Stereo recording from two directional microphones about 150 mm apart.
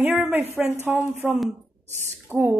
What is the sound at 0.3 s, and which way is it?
Speech, 15° right (ahead or behind).